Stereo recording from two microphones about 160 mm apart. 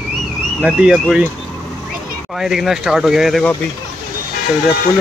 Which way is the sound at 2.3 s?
Centre (ahead or behind).